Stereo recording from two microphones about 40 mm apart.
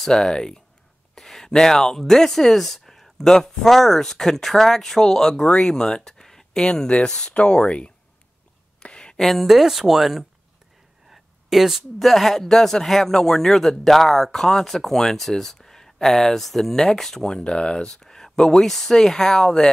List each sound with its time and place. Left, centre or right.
0.0 s speech: centre
1.1 s a sound: centre
1.5 s speech: centre
8.8 s a sound: left
9.2 s speech: centre
11.1 s a sound: centre
12.0 s speech: centre
16.7 s speech: centre
17.4 s speech: left